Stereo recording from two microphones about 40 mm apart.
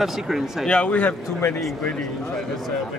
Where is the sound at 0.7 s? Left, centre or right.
Left.